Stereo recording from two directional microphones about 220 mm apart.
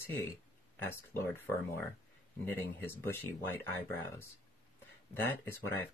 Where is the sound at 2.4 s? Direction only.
10° left (ahead or behind).